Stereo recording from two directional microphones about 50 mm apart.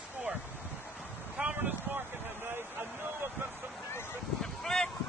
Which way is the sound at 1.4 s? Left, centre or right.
Right.